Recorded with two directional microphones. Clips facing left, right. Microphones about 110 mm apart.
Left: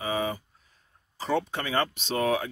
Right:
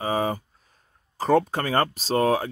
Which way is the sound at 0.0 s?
40° right (ahead or behind).